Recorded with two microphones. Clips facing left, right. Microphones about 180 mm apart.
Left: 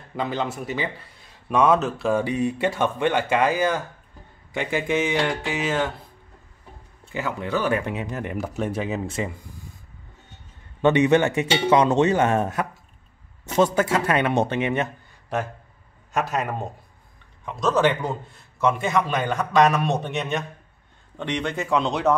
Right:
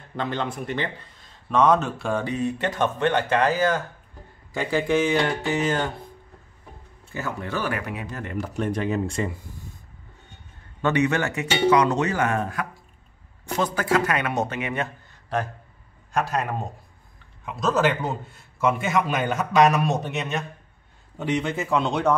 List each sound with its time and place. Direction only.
0.1 s a man's voice: 5° left (ahead or behind); by 5.0 s 20° left (ahead or behind)
5.5 s speech: 5° left (ahead or behind)
7.1 s speech: 15° left (ahead or behind)
8.5 s a man's voice: 5° left (ahead or behind)
10.8 s speech: 20° left (ahead or behind)
16.1 s a man's voice: centre (ahead or behind)